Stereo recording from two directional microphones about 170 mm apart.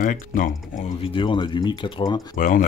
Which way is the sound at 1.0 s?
30° left (ahead or behind).